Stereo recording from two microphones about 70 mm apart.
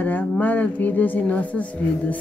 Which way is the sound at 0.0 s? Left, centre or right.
Left.